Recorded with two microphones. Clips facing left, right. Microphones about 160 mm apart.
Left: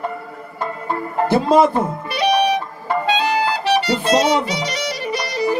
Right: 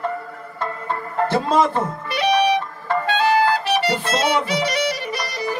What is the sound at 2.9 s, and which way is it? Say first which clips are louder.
Music: left 2 dB; 15° left (ahead or behind).